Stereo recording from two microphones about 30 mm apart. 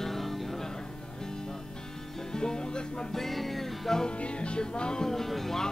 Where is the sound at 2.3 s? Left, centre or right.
Left.